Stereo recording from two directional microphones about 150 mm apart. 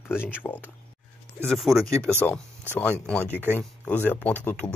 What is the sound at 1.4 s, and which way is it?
Speech, centre (ahead or behind).